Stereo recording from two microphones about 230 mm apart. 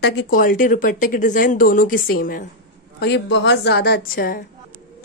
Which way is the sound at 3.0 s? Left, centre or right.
Left.